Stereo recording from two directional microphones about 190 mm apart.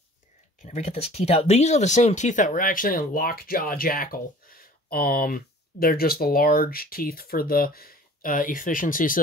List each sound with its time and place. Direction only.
0.7 s speech: 35° left (ahead or behind)